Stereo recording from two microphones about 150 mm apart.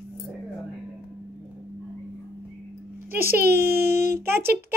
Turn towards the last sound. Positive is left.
turn(degrees=-15)  # may be behind; listen again after turning